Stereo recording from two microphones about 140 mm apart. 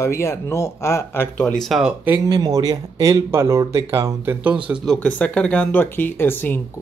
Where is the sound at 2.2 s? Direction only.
25° right (ahead or behind); by 4.8 s 10° right (ahead or behind).